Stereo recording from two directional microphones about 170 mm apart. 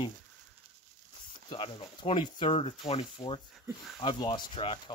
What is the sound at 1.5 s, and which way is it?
Speech, 30° left (ahead or behind).